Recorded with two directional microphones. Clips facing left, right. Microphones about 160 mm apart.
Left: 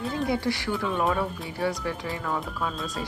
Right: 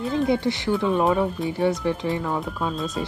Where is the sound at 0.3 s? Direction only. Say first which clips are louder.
Right 5 dB; 20° right (ahead or behind).